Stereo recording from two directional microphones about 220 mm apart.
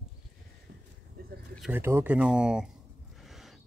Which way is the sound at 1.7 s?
10° right (ahead or behind).